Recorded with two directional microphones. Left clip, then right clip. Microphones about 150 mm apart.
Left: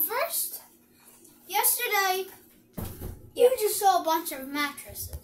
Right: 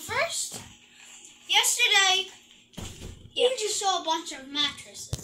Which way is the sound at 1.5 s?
20° left (ahead or behind).